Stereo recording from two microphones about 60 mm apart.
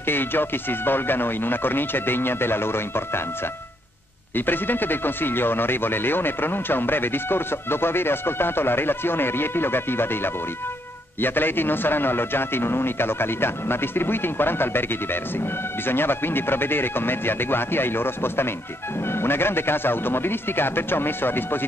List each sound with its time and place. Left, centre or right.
0.1 s speech: left
4.5 s speech: left
15.9 s speech: left